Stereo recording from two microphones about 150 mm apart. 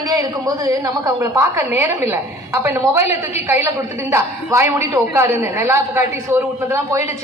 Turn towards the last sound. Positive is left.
turn(degrees=-20)  # may be behind; listen again after turning